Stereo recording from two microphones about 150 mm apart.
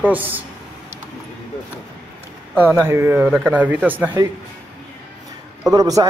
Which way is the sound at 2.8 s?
15° right (ahead or behind).